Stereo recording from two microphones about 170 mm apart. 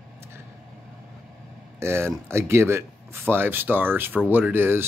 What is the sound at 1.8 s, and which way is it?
Speech, 15° right (ahead or behind).